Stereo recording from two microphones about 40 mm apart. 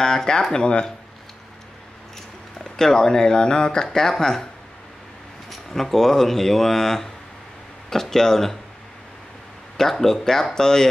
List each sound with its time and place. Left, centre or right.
0.0 s speech: centre
2.6 s speech: centre
5.5 s speech: centre
9.8 s speech: centre